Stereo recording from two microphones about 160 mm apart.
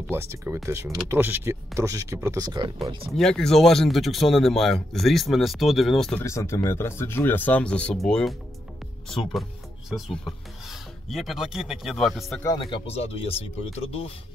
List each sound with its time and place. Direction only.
0.1 s speech: 15° right (ahead or behind)
3.1 s speech: 5° left (ahead or behind)
6.2 s speech: 20° left (ahead or behind); by 12.4 s centre (ahead or behind)
12.4 s speech: 30° left (ahead or behind)